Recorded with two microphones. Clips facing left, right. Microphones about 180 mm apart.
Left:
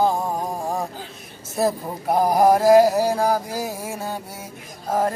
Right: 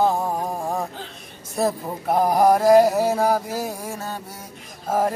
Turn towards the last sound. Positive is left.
turn(degrees=-5)  # may be behind; listen again after turning